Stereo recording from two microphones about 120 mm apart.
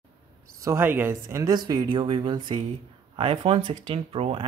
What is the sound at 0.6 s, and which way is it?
Speech, 20° right (ahead or behind).